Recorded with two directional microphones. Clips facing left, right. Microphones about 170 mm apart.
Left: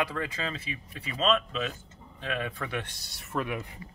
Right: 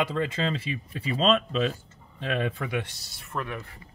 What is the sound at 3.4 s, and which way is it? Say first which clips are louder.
Speech: left 3 dB; 15° left (ahead or behind).